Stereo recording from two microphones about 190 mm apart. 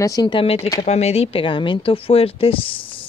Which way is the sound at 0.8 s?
35° left (ahead or behind).